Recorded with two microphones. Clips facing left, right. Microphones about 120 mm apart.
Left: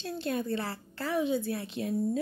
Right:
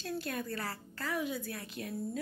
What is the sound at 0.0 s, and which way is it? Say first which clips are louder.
Speech: left 5 dB; 25° left (ahead or behind).